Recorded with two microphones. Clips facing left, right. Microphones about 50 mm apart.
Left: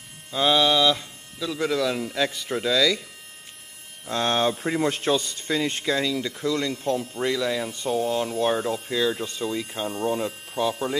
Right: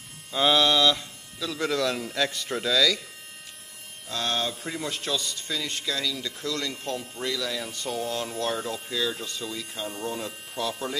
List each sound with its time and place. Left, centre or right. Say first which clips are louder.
0.3 s speech: left 1 dB; centre
4.1 s speech: left 6 dB; left; by 11.0 s centre